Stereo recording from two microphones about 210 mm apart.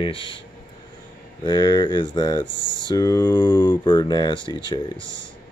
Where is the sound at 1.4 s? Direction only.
20° left (ahead or behind).